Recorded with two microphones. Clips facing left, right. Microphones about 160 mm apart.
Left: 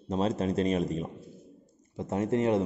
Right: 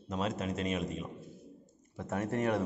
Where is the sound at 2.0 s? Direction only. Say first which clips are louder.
Left 6 dB; 20° left (ahead or behind).